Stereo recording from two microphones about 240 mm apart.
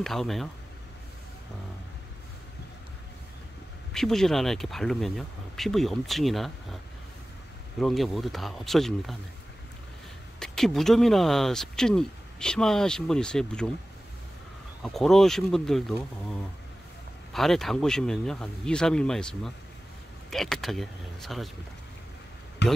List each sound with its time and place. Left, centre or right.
0.0 s speech: centre
3.9 s speech: centre
7.8 s speech: centre
10.4 s speech: centre
14.8 s speech: centre
17.3 s speech: centre
22.6 s speech: left